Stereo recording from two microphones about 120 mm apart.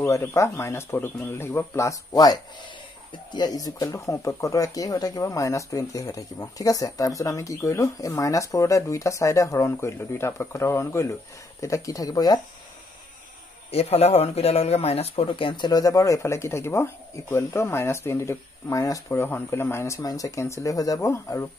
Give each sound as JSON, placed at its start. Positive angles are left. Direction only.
{"t": 0.0, "sound": "speech", "side_deg": 25}
{"t": 13.7, "sound": "speech", "side_deg": 60}
{"t": 15.2, "sound": "speech", "side_deg": 45}